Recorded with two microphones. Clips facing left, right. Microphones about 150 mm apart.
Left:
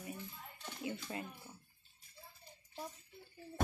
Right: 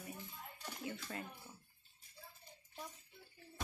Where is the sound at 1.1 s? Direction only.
15° left (ahead or behind).